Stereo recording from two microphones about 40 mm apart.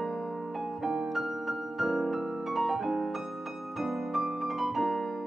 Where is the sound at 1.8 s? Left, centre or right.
Centre.